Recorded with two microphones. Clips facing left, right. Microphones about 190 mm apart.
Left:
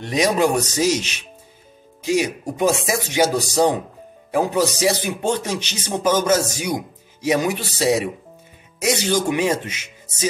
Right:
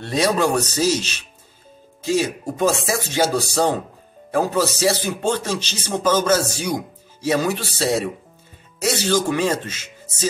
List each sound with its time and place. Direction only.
0.0 s speech: 15° left (ahead or behind)